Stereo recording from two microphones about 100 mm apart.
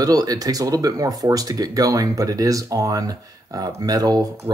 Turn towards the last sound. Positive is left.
turn(degrees=-40)  # may be behind; listen again after turning